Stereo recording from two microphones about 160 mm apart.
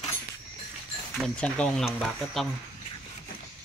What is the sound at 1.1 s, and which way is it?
Speech, 5° left (ahead or behind).